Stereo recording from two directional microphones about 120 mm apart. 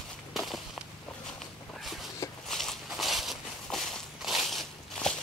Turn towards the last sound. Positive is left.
turn(degrees=0)  # may be behind; listen again after turning